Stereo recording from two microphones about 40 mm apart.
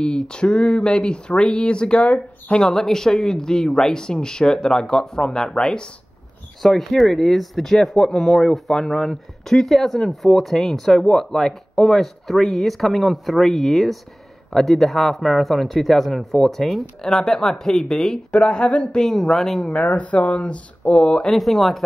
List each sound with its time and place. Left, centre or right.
0.0 s speech: left
2.0 s speech: left
2.5 s speech: centre
6.6 s speech: centre
18.3 s speech: left
18.9 s speech: centre
19.7 s speech: left
21.3 s speech: centre